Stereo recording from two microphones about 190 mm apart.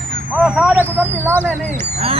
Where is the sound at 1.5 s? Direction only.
10° left (ahead or behind).